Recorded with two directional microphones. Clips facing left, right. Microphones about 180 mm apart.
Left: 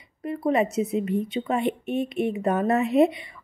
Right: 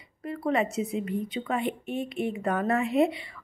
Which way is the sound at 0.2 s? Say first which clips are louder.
Left 4 dB; 20° left (ahead or behind).